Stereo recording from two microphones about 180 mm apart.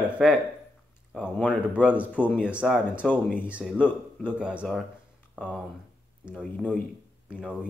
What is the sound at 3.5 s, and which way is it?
Speech, 5° right (ahead or behind).